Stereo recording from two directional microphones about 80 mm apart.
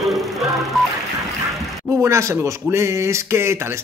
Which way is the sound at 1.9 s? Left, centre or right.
Right.